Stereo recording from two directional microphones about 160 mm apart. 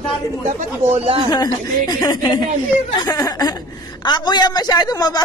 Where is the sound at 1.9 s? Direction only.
25° left (ahead or behind).